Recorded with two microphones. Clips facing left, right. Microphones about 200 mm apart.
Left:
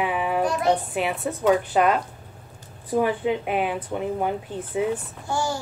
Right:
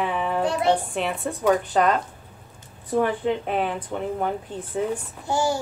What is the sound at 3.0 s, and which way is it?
Speech, 10° left (ahead or behind).